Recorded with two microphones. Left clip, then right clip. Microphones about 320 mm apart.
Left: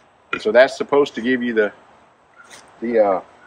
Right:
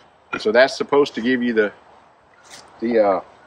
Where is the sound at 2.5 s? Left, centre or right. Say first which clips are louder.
Right 1 dB; centre.